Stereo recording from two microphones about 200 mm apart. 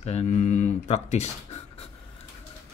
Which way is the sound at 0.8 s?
35° left (ahead or behind).